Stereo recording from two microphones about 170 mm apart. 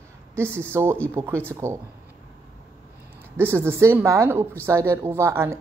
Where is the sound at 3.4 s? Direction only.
15° right (ahead or behind).